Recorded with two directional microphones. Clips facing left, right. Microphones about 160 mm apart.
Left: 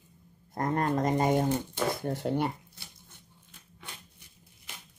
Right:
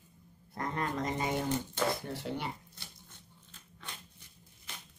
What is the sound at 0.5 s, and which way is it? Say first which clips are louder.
Pigeon: left 7 dB; 45° left (ahead or behind).